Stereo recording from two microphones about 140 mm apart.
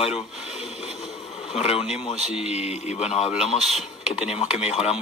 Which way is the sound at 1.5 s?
45° left (ahead or behind).